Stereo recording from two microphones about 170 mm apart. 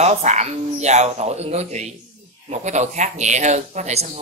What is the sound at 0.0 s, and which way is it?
Speech, 40° right (ahead or behind).